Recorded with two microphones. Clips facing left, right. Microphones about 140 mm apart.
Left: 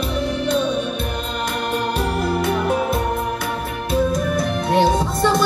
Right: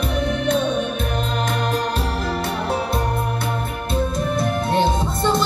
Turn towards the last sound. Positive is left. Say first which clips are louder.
# left 2 dB
turn(degrees=-25)  # may be behind; listen again after turning